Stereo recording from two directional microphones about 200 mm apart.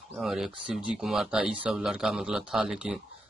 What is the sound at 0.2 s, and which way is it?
Speech, centre (ahead or behind).